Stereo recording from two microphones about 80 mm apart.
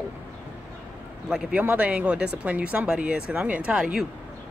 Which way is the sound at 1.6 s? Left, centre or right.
Centre.